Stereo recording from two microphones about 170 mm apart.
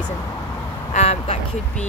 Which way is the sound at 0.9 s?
40° left (ahead or behind).